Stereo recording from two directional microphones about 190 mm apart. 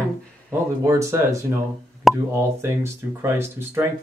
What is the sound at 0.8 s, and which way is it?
Speech, 15° right (ahead or behind).